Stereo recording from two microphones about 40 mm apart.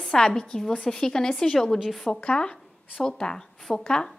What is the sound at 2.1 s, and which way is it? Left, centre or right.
A woman's voice, left.